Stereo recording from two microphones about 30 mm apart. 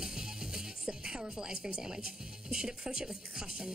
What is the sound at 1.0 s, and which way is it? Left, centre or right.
Music, right.